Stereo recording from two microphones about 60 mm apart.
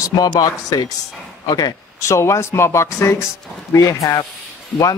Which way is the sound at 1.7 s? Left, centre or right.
Left.